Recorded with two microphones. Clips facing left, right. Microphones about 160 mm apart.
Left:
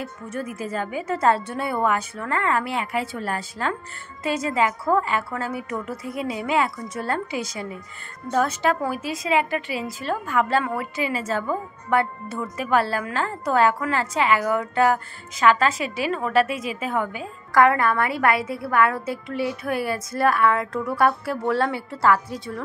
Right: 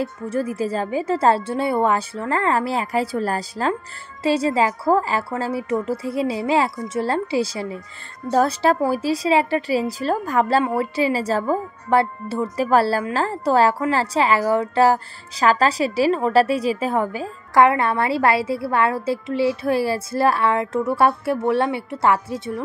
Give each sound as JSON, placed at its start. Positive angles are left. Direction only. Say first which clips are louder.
{"t": 0.0, "sound": "a woman's voice", "louder": "right 7 dB", "side_deg": -30}